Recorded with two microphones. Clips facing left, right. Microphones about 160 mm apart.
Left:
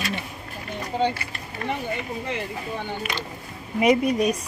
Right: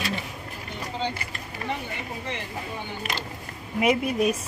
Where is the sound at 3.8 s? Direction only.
5° right (ahead or behind).